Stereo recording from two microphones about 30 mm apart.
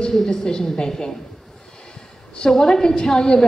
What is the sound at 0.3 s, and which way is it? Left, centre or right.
Speech, left.